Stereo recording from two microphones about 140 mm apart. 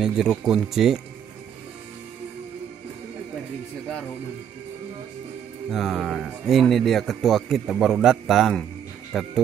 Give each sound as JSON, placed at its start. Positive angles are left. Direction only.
{"t": 0.0, "sound": "a man's voice", "side_deg": -5}
{"t": 5.7, "sound": "a man's voice", "side_deg": 0}